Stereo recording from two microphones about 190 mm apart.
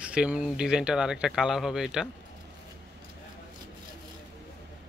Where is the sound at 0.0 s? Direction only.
5° right (ahead or behind).